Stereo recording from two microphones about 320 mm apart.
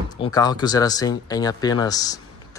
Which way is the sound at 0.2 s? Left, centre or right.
Centre.